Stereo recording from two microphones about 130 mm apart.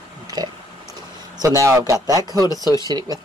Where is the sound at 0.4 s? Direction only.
30° right (ahead or behind).